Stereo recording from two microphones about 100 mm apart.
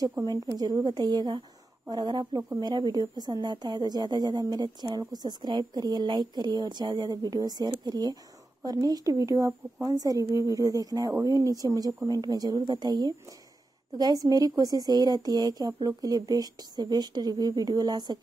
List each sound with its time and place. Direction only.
0.2 s a woman's voice: 35° right (ahead or behind)